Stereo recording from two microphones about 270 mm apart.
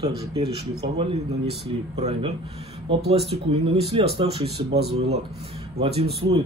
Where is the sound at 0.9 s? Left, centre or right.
Right.